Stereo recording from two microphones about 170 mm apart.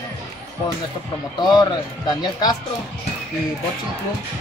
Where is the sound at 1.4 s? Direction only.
25° left (ahead or behind).